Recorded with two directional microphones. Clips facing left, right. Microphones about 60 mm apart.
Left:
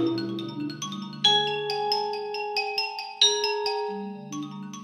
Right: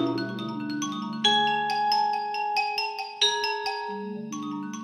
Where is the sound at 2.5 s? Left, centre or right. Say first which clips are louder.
Right 3 dB; centre.